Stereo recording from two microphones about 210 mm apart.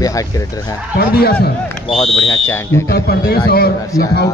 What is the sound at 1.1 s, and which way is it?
Speech, 50° left (ahead or behind).